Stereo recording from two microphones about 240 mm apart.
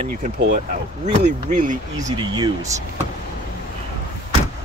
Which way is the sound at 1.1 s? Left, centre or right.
Right.